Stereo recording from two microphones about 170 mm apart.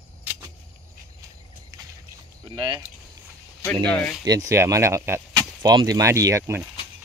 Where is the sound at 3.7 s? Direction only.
5° left (ahead or behind).